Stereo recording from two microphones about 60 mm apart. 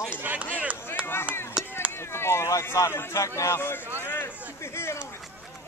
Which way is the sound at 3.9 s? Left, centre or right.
Left.